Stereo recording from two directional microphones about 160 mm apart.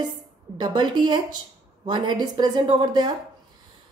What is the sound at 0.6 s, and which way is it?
A woman's voice, 25° right (ahead or behind).